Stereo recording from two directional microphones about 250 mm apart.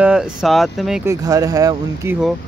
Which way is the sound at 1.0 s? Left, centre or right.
Centre.